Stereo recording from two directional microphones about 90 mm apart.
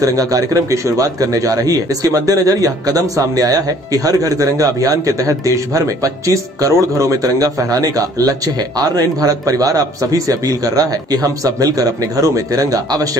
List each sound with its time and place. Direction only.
0.0 s a man's voice: 40° right (ahead or behind)